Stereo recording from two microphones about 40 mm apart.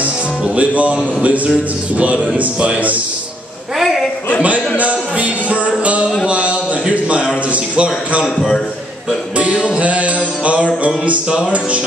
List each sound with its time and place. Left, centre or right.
0.6 s a man's voice: right
2.0 s a man's voice: right
4.4 s a man's voice: right
6.2 s a sound: right
7.5 s a man's voice: right
9.4 s a man's voice: right